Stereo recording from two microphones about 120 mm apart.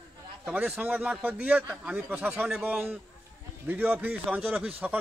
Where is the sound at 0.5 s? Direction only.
5° right (ahead or behind).